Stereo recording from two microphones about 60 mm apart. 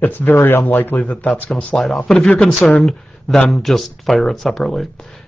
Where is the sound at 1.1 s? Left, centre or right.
Centre.